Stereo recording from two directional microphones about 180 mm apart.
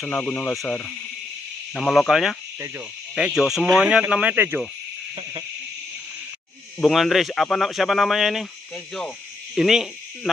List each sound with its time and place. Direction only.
0.0 s hoot: 10° left (ahead or behind)
1.7 s speech: 5° left (ahead or behind)
6.8 s speech: centre (ahead or behind)